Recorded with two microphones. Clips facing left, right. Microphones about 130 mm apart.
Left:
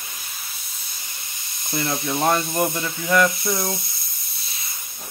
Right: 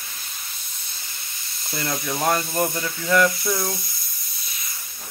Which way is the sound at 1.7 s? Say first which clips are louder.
Left 3 dB; 20° left (ahead or behind).